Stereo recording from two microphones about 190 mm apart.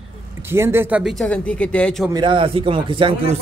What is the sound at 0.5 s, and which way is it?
Speech, 10° right (ahead or behind).